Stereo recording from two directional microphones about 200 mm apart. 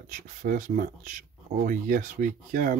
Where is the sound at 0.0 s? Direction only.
40° right (ahead or behind).